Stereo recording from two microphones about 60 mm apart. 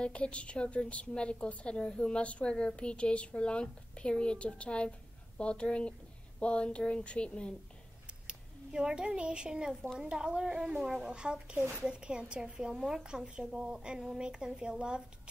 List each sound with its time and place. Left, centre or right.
0.0 s a woman's voice: centre
8.3 s a child's voice: centre